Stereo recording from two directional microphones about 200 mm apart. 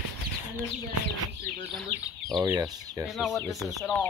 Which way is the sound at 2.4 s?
15° right (ahead or behind).